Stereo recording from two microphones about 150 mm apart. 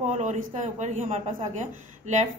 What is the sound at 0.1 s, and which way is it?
A man's voice, 50° right (ahead or behind).